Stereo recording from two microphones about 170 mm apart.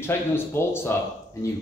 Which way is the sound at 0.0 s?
15° left (ahead or behind).